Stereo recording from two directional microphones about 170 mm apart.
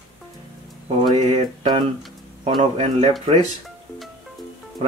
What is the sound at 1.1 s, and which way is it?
Speech, 40° right (ahead or behind).